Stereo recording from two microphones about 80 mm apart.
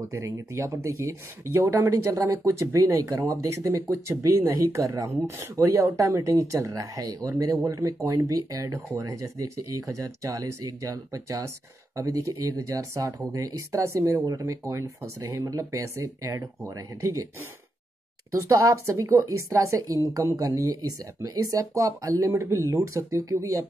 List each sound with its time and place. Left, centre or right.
0.1 s speech: right
18.3 s speech: right